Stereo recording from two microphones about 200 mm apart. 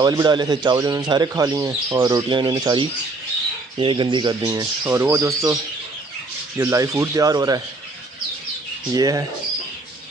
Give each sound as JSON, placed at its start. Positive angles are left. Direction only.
{"t": 0.0, "sound": "speech", "side_deg": -20}
{"t": 6.6, "sound": "speech", "side_deg": -15}
{"t": 8.9, "sound": "speech", "side_deg": -20}